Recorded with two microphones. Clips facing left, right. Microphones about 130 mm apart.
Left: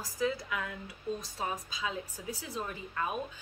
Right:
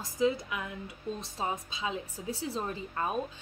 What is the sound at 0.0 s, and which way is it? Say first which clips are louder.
A woman's voice: right 4 dB; 20° right (ahead or behind).